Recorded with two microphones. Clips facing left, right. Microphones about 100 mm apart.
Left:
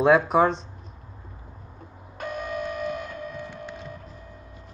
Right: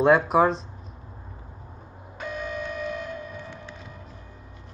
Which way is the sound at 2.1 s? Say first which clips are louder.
Left 1 dB; 55° left (ahead or behind).